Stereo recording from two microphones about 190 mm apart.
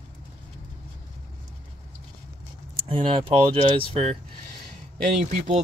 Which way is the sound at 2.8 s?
30° right (ahead or behind).